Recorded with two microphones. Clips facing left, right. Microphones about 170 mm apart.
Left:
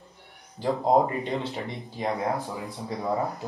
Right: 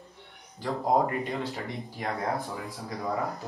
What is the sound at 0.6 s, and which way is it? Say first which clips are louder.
Speech: left 4 dB; 25° left (ahead or behind).